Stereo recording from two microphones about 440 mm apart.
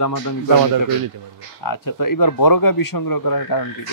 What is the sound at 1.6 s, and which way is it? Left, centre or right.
Speech, left.